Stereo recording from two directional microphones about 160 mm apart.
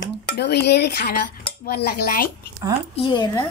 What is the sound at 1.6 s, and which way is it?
Dishes, 75° left (ahead or behind).